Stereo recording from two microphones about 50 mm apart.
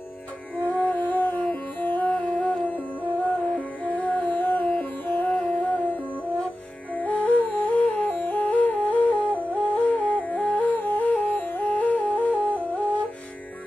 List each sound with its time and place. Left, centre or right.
0.6 s music: left
12.4 s music: right